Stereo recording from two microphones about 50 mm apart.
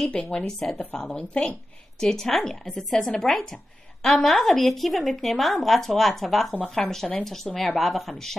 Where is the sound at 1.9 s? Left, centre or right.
Centre.